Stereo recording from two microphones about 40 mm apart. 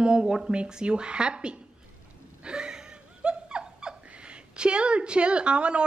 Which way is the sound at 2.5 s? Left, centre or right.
Right.